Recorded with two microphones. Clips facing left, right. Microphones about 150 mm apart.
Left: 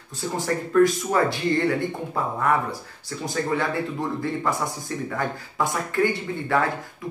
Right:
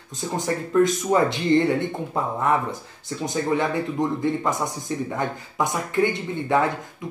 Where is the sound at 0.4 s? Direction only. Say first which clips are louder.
Left 1 dB; 20° right (ahead or behind).